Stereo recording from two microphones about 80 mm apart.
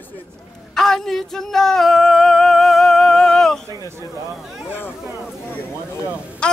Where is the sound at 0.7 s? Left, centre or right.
Centre.